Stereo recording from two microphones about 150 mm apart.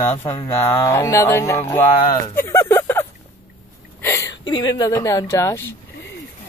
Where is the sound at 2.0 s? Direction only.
20° left (ahead or behind).